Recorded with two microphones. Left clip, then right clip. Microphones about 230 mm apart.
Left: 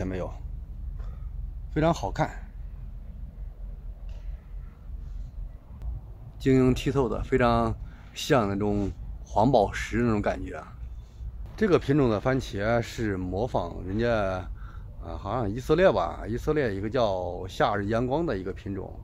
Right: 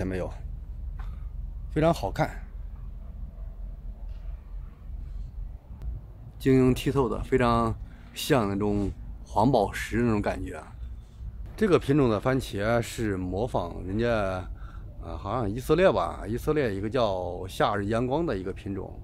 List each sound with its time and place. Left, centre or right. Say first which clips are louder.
0.0 s a sound: right 1 dB; centre
1.7 s speech: right 1 dB; centre
6.4 s speech: even; centre